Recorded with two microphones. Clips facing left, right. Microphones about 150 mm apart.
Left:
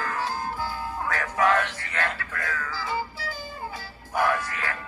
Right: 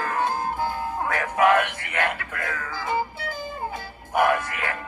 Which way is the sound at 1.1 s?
15° right (ahead or behind).